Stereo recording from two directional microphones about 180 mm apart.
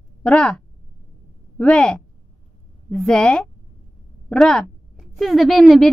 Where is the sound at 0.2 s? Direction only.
5° left (ahead or behind).